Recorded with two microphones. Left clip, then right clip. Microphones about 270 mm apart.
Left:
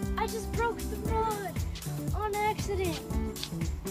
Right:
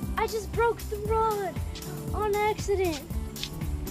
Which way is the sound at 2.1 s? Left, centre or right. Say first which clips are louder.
Right 4 dB; centre.